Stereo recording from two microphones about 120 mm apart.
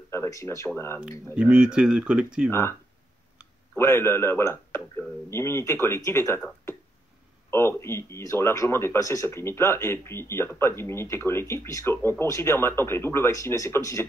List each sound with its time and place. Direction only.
0.1 s speech: 25° left (ahead or behind)
1.3 s speech: 10° right (ahead or behind)
3.7 s speech: 20° left (ahead or behind)